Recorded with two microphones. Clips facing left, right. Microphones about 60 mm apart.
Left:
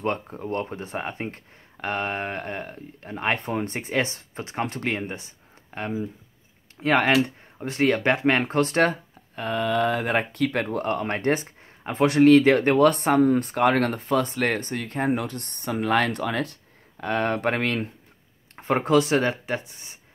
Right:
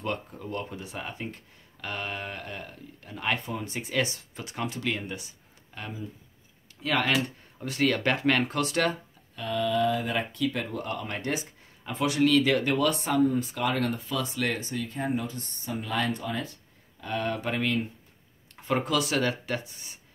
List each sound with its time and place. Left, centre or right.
0.0 s speech: left
18.6 s speech: left